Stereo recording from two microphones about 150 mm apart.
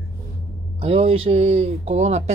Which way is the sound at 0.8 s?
40° right (ahead or behind).